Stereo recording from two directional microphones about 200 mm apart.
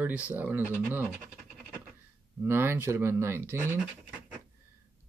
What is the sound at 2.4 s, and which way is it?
Speech, 10° right (ahead or behind).